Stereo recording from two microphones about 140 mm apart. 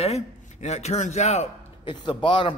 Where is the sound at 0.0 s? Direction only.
50° left (ahead or behind).